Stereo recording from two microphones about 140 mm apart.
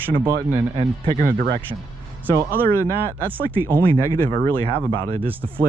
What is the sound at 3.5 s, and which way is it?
Speech, 15° right (ahead or behind).